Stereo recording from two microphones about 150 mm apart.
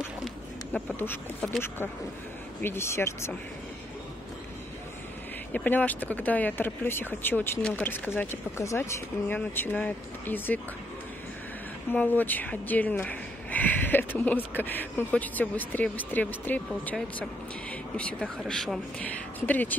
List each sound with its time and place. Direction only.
0.7 s speech: 15° left (ahead or behind)
2.6 s speech: 15° left (ahead or behind)
5.5 s speech: 10° left (ahead or behind)
11.9 s speech: 10° left (ahead or behind)